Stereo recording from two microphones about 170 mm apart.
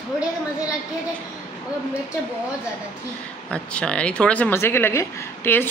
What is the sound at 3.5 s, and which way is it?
Speech, 5° left (ahead or behind).